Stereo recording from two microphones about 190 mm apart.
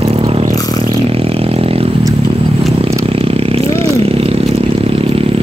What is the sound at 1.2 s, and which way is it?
Vehicle, 30° right (ahead or behind).